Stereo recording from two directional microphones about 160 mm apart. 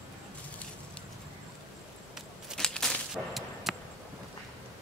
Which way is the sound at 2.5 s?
5° left (ahead or behind).